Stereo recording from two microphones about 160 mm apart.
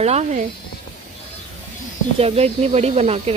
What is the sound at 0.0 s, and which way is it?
Speech, 40° right (ahead or behind).